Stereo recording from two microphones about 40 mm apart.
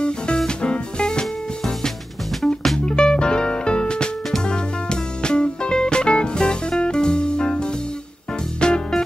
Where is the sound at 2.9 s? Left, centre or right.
Left.